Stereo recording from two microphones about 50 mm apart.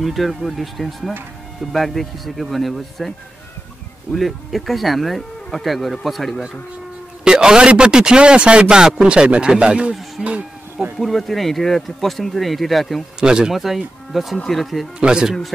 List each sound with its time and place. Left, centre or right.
0.0 s speech: centre
4.1 s speech: centre
7.2 s a man's voice: centre
11.0 s speech: centre
13.2 s a man's voice: centre
13.5 s speech: centre
15.0 s a man's voice: centre